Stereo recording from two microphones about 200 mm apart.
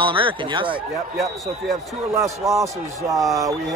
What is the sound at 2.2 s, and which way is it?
A man's voice, 15° right (ahead or behind).